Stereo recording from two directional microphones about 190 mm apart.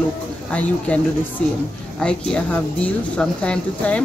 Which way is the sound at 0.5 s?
5° left (ahead or behind).